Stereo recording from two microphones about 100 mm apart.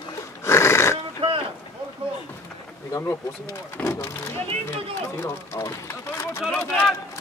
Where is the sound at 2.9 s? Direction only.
30° left (ahead or behind).